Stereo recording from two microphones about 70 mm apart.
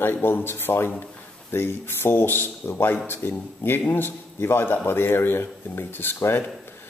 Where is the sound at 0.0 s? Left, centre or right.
Left.